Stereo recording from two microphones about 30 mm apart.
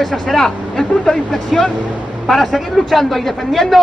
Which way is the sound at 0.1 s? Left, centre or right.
Centre.